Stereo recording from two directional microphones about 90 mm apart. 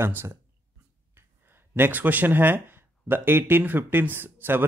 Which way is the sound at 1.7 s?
20° right (ahead or behind).